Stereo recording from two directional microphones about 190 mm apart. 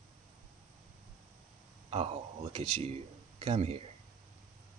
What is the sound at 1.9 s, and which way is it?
Speech, 30° right (ahead or behind).